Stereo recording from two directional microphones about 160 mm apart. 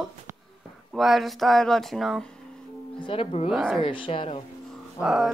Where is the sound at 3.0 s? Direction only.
35° left (ahead or behind).